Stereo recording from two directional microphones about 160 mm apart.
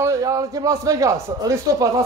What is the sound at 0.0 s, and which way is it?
A man's voice, 20° right (ahead or behind).